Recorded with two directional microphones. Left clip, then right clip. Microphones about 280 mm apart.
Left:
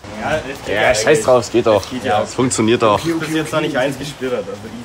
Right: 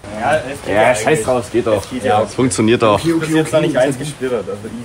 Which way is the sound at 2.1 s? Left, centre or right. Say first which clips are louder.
Right 2 dB; centre.